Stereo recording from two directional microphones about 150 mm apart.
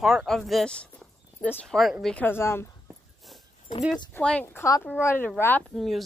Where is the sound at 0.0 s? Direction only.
Centre (ahead or behind).